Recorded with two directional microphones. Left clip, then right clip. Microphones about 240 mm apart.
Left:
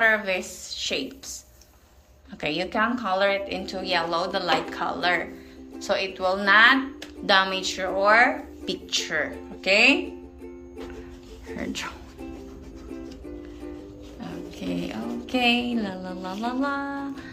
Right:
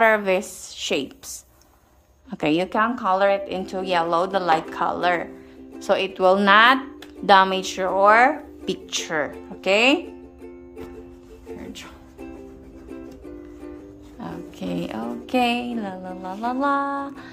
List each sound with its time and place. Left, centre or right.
0.0 s a woman's voice: right
2.3 s a woman's voice: right
11.5 s music: centre
14.2 s speech: right